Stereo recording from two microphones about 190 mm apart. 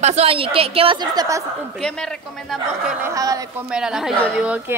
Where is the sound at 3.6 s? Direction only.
5° right (ahead or behind).